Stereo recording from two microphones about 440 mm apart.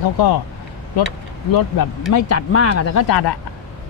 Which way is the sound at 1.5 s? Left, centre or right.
Left.